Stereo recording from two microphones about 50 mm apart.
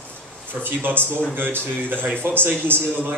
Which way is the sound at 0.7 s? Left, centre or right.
Right.